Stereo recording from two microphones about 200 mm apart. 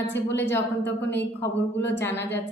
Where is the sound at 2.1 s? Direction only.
60° left (ahead or behind).